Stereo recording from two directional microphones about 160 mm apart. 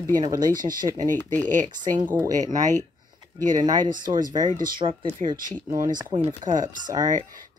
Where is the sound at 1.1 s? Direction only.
10° left (ahead or behind).